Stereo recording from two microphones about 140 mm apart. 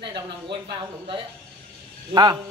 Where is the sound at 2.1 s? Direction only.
30° right (ahead or behind).